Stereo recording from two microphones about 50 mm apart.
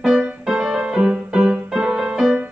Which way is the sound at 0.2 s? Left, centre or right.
Centre.